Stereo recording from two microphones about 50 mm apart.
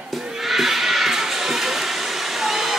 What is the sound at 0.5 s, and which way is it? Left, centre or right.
Neigh, centre.